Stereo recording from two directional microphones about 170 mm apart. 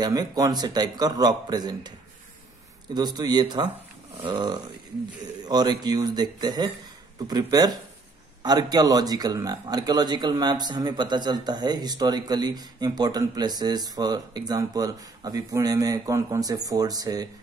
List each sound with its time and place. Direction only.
0.0 s a man's voice: 25° right (ahead or behind)